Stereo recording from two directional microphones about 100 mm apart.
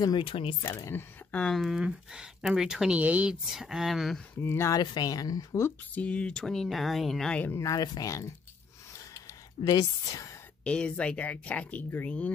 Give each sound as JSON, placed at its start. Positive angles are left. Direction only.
{"t": 0.2, "sound": "speech", "side_deg": 60}
{"t": 0.6, "sound": "speech", "side_deg": 30}
{"t": 1.3, "sound": "speech", "side_deg": 5}
{"t": 1.8, "sound": "speech", "side_deg": -10}
{"t": 4.4, "sound": "speech", "side_deg": 25}
{"t": 4.7, "sound": "speech", "side_deg": 40}
{"t": 5.9, "sound": "speech", "side_deg": 10}
{"t": 7.5, "sound": "speech", "side_deg": 35}
{"t": 9.6, "sound": "speech", "side_deg": 40}
{"t": 10.6, "sound": "speech", "side_deg": 10}